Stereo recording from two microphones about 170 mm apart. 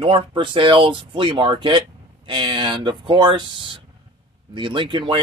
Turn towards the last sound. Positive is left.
turn(degrees=-30)  # may be behind; listen again after turning